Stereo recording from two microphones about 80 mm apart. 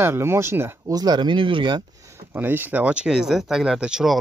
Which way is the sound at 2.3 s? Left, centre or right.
Right.